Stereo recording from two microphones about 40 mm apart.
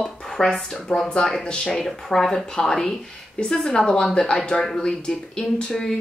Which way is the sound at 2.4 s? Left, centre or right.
Centre.